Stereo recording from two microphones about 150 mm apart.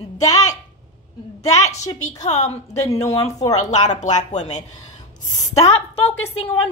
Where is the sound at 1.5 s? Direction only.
50° left (ahead or behind).